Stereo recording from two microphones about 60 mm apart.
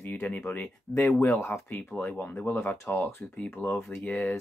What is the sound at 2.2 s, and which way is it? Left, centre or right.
Speech, left.